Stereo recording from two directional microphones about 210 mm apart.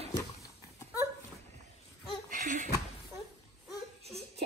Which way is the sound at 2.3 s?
35° right (ahead or behind).